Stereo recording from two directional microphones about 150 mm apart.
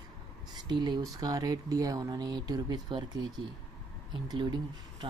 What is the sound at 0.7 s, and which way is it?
Speech, 30° right (ahead or behind).